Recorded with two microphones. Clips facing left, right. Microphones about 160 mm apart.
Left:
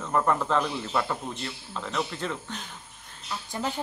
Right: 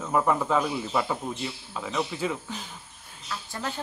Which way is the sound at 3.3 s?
15° left (ahead or behind).